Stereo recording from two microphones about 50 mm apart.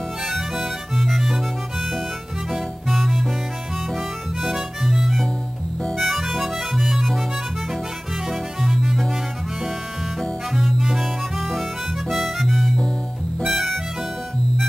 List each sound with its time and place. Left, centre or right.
0.2 s music: centre
3.9 s harmonica: centre
5.9 s music: centre
8.3 s music: centre
10.5 s harmonica: centre